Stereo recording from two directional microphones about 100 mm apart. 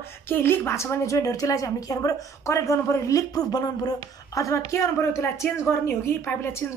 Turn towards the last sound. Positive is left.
turn(degrees=25)  # may be behind; listen again after turning